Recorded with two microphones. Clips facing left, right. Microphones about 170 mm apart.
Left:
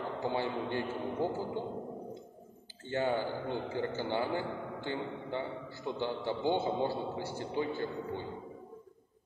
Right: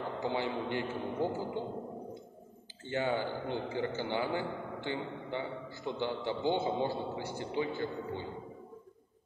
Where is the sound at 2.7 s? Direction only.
15° right (ahead or behind).